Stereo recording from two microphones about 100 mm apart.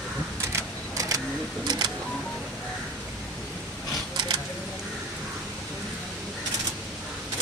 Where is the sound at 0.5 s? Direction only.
30° right (ahead or behind).